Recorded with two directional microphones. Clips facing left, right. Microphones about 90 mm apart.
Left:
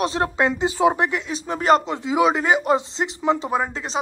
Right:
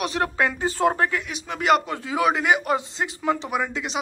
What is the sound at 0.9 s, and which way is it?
Speech, 20° left (ahead or behind).